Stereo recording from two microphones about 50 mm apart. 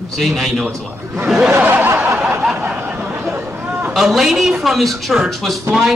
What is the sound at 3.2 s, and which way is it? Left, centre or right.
Chatter, right.